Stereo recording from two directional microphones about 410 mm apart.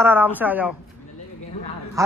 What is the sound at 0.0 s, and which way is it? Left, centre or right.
Speech, centre.